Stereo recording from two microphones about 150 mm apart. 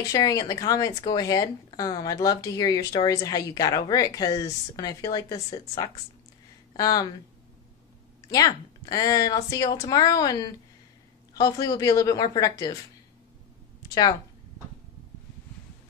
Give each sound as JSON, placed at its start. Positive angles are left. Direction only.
{"t": 0.1, "sound": "speech", "side_deg": 25}
{"t": 8.3, "sound": "speech", "side_deg": 25}